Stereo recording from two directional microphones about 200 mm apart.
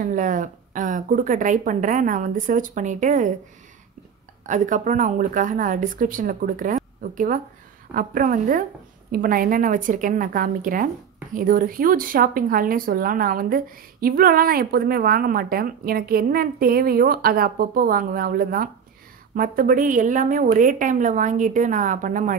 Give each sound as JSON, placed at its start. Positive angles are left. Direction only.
{"t": 0.0, "sound": "speech", "side_deg": -40}
{"t": 4.5, "sound": "speech", "side_deg": -40}